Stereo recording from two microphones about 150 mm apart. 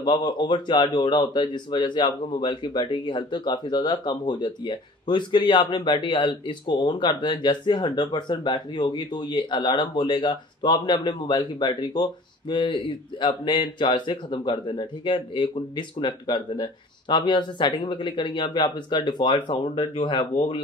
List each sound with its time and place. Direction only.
0.0 s speech: 30° left (ahead or behind)